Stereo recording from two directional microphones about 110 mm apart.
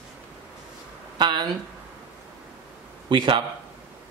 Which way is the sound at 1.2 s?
45° right (ahead or behind).